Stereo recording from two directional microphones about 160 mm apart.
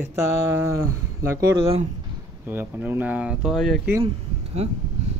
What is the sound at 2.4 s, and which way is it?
Speech, 10° right (ahead or behind).